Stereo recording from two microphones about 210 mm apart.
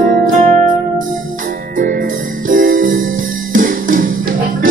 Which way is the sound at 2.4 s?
40° right (ahead or behind).